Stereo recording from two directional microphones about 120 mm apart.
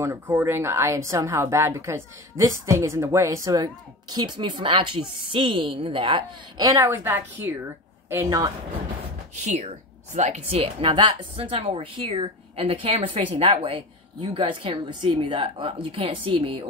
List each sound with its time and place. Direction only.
0.0 s speech: 25° right (ahead or behind); by 6.2 s 45° right (ahead or behind)
6.6 s speech: 25° right (ahead or behind)
9.4 s speech: 75° right (ahead or behind)
10.5 s a woman's voice: 50° right (ahead or behind)